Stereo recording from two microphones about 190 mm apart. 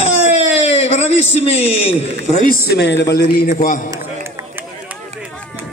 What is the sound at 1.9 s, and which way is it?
Speech, 40° left (ahead or behind).